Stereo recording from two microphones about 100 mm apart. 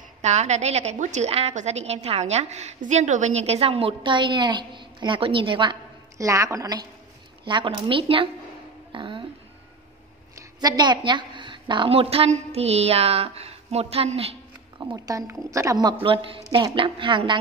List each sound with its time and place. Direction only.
0.3 s a woman's voice: 90° right; by 5.8 s 55° right (ahead or behind)
6.1 s a woman's voice: 30° right (ahead or behind)
7.4 s a woman's voice: 55° right (ahead or behind)
8.9 s music: 60° right (ahead or behind)
10.3 s a woman's voice: 45° right (ahead or behind)
11.9 s a woman's voice: 80° right
15.0 s a woman's voice: 35° right (ahead or behind)
15.8 s a woman's voice: 55° right (ahead or behind)